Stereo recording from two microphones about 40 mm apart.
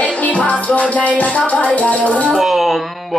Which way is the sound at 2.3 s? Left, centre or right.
Centre.